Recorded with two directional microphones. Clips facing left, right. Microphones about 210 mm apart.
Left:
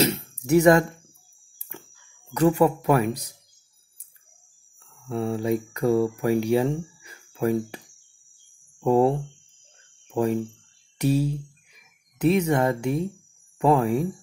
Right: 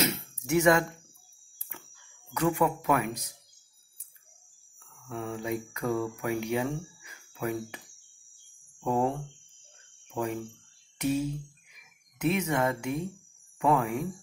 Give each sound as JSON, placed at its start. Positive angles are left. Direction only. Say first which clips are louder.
{"t": 0.0, "sound": "a sound", "louder": "left 7 dB", "side_deg": 35}
{"t": 2.3, "sound": "speech", "louder": "left 7 dB", "side_deg": 35}
{"t": 5.0, "sound": "speech", "louder": "left 9 dB", "side_deg": 35}
{"t": 8.8, "sound": "speech", "louder": "left 8 dB", "side_deg": 35}
{"t": 10.1, "sound": "speech", "louder": "left 9 dB", "side_deg": 35}